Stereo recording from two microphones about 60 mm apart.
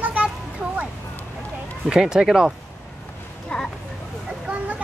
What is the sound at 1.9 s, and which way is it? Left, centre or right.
Speech, centre.